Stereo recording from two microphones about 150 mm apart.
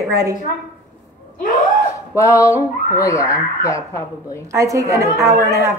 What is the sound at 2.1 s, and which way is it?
Speech, 20° left (ahead or behind).